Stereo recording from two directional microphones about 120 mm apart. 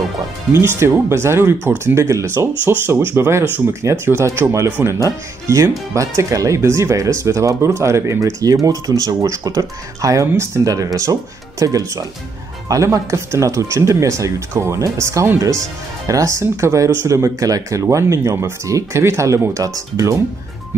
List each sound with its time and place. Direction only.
0.5 s speech: 20° right (ahead or behind)